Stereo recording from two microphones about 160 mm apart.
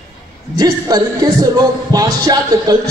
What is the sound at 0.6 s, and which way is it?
Speech, 25° right (ahead or behind).